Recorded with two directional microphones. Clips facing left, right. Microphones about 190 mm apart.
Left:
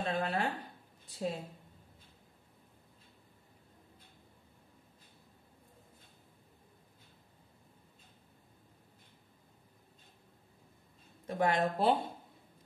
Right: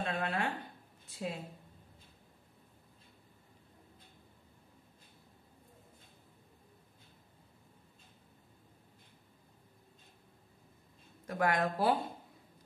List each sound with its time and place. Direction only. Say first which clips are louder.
0.0 s a sound: left 2 dB; 35° left (ahead or behind)
1.1 s speech: left 3 dB; 35° left (ahead or behind)
11.2 s speech: left 1 dB; 25° left (ahead or behind)